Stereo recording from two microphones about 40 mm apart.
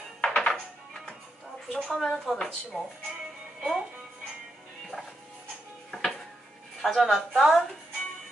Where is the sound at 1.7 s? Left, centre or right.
Centre.